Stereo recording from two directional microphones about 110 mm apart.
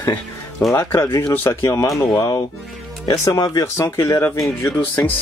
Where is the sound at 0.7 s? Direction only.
20° left (ahead or behind).